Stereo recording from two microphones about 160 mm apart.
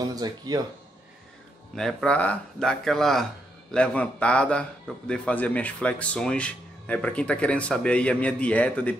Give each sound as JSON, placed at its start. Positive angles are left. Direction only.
{"t": 0.1, "sound": "speech", "side_deg": -25}
{"t": 1.8, "sound": "a man's voice", "side_deg": 0}